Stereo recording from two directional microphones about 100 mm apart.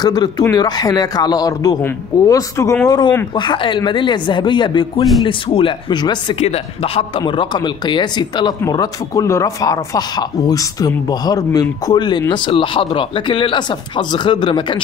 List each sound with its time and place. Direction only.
0.0 s speech: 40° left (ahead or behind)
3.3 s speech: 55° left (ahead or behind)
6.4 s speech: 85° left; by 8.5 s 50° left (ahead or behind)
8.6 s speech: 35° left (ahead or behind)